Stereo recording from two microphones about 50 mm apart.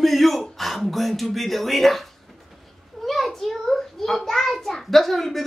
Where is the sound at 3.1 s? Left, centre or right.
Centre.